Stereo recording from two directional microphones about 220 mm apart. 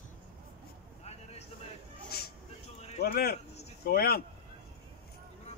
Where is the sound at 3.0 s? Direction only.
45° left (ahead or behind).